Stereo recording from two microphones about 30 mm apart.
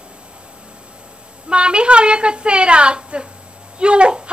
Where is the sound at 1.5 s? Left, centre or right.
Right.